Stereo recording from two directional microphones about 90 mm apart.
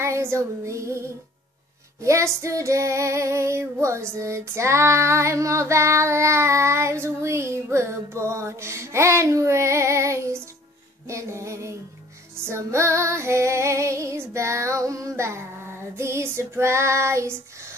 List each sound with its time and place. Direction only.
0.0 s child singing: 30° right (ahead or behind)
2.0 s female singing: 35° right (ahead or behind)